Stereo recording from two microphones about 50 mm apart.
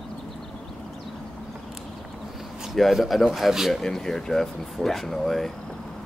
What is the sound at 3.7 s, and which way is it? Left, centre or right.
A man's voice, centre.